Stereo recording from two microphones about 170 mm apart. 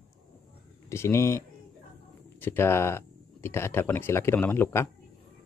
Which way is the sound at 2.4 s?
15° left (ahead or behind).